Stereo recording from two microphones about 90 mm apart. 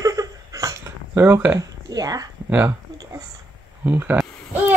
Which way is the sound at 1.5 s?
45° right (ahead or behind).